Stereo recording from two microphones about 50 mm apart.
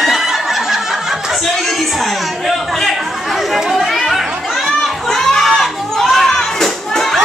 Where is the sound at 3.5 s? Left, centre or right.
Centre.